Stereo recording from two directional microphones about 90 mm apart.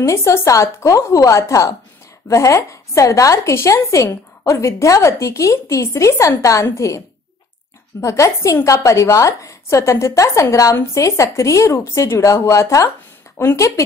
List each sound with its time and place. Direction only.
0.0 s a woman's voice: 35° left (ahead or behind)
8.0 s a woman's voice: 35° left (ahead or behind)